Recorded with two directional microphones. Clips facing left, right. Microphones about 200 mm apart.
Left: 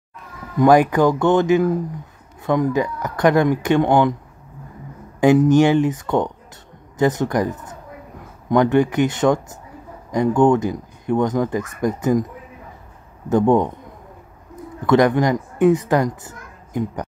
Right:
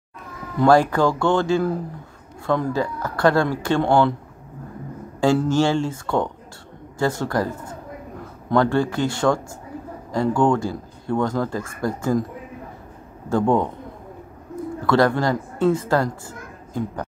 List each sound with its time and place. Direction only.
0.6 s speech: 15° left (ahead or behind)
5.2 s speech: 20° left (ahead or behind)
13.3 s speech: 20° left (ahead or behind)
14.9 s speech: 20° left (ahead or behind)